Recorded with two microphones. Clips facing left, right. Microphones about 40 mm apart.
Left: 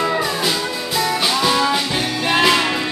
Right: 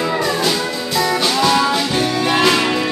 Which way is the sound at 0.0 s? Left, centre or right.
Centre.